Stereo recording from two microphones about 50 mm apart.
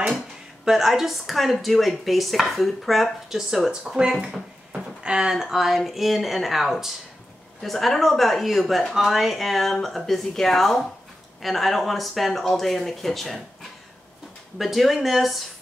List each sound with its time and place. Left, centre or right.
0.7 s a woman's voice: centre
5.3 s a woman's voice: centre